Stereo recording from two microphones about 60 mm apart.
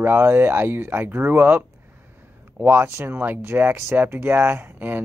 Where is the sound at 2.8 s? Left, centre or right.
Right.